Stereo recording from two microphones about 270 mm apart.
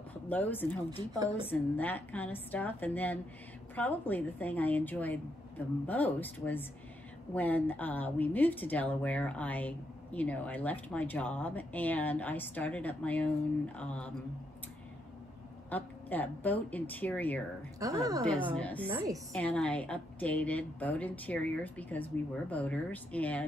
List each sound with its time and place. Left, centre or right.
0.1 s speech: centre
15.7 s speech: centre
17.7 s speech: centre
18.5 s speech: centre
18.9 s a woman's voice: centre
19.3 s speech: centre